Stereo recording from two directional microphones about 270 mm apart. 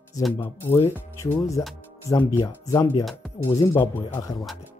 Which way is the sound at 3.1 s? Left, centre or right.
Centre.